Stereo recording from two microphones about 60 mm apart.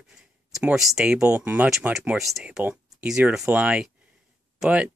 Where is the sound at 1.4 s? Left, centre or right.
Right.